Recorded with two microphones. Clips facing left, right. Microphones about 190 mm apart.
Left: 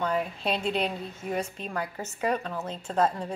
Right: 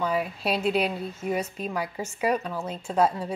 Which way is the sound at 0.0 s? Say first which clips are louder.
Right 1 dB; 10° right (ahead or behind).